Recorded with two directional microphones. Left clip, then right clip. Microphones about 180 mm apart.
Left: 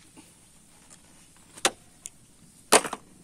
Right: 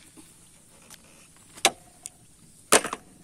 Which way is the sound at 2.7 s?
25° right (ahead or behind).